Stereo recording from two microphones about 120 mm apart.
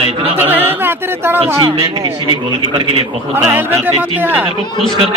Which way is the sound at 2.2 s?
45° right (ahead or behind).